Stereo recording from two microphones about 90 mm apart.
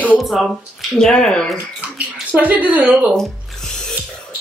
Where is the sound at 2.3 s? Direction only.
15° right (ahead or behind).